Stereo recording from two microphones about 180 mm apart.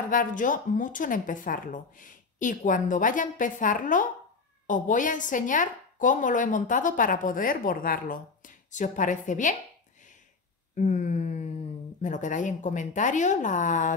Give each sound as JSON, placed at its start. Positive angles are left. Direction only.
{"t": 0.1, "sound": "speech", "side_deg": 45}
{"t": 10.8, "sound": "a sound", "side_deg": 40}
{"t": 12.0, "sound": "speech", "side_deg": 45}